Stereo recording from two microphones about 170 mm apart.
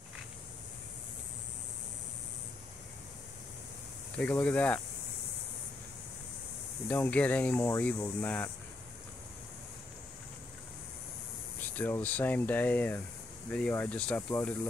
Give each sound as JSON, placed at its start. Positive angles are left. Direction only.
{"t": 4.2, "sound": "speech", "side_deg": 10}
{"t": 6.9, "sound": "speech", "side_deg": 10}
{"t": 11.7, "sound": "speech", "side_deg": 10}